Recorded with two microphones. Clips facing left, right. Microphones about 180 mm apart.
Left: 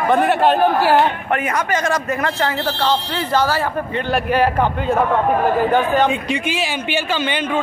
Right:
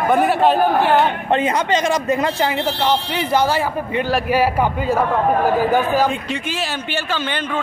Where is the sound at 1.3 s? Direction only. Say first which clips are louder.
Right 2 dB; 25° right (ahead or behind); by 6.1 s 5° right (ahead or behind).